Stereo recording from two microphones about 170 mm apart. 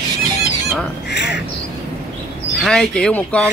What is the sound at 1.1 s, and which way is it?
Duck, 90° left.